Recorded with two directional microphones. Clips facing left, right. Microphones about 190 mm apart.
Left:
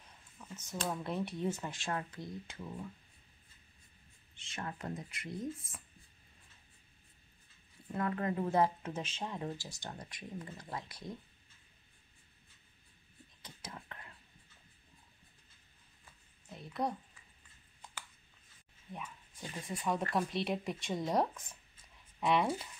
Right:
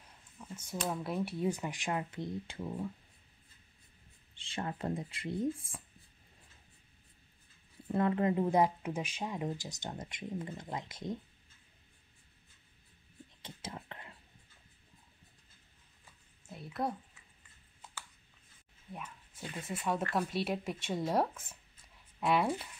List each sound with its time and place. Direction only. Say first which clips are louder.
0.4 s a sound: right 2 dB; 10° right (ahead or behind)
0.9 s speech: right 2 dB; 5° right (ahead or behind); by 2.9 s 35° right (ahead or behind)
4.4 s speech: right 5 dB; 30° right (ahead or behind)
7.9 s speech: right 5 dB; 25° right (ahead or behind)
13.4 s whispering: right 4 dB; 25° right (ahead or behind)
16.4 s a sound: even; 5° right (ahead or behind)
20.1 s speech: right 1 dB; centre (ahead or behind)